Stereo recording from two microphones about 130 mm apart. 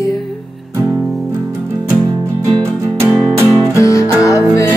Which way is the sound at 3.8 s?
25° left (ahead or behind).